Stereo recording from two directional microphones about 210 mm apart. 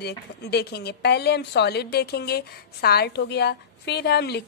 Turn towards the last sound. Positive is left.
turn(degrees=50)  # may be behind; listen again after turning